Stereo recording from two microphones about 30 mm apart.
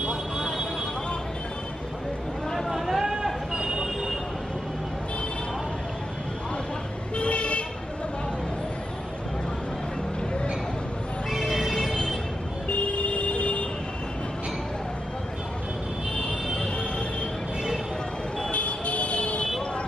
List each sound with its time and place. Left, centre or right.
2.7 s a sound: centre
3.5 s vehicle: centre
7.2 s vehicle: left
11.2 s music: centre
11.7 s vehicle: left
12.6 s vehicle: left
18.5 s vehicle: left